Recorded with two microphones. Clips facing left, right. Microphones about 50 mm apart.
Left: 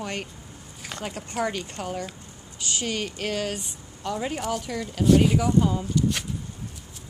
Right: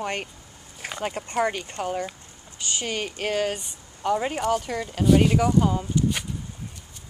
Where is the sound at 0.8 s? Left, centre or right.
Right.